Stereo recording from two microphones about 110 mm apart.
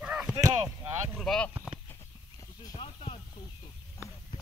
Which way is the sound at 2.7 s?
55° left (ahead or behind).